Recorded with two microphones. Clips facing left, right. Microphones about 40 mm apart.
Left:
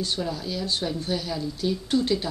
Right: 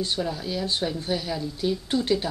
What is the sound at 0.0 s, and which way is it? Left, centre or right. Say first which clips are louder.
A woman's voice: right 1 dB; centre.